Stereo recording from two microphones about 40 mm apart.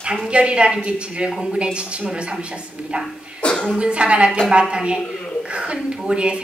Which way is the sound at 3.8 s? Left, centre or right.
Right.